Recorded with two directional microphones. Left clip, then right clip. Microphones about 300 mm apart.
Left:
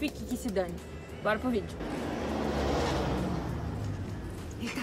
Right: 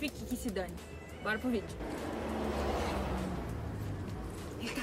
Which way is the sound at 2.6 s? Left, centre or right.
Left.